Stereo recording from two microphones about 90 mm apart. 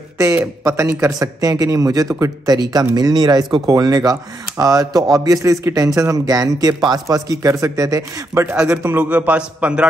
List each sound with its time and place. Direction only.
0.7 s speech: 35° right (ahead or behind)
8.5 s a man's voice: 10° right (ahead or behind)
8.8 s a man's voice: 20° right (ahead or behind)